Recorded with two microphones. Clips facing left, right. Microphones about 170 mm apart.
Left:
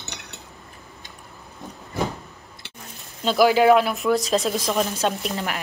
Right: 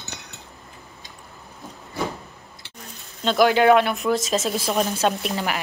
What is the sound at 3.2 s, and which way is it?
A woman's voice, 5° left (ahead or behind).